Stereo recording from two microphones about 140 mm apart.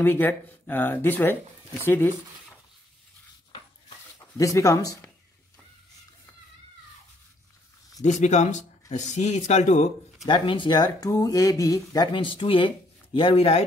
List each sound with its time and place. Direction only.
0.0 s speech: 15° left (ahead or behind)
4.4 s speech: 25° left (ahead or behind)
8.0 s speech: 55° left (ahead or behind)
10.2 s speech: 35° left (ahead or behind)